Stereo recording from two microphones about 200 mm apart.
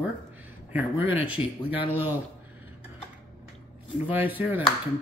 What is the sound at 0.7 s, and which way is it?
Speech, 10° right (ahead or behind).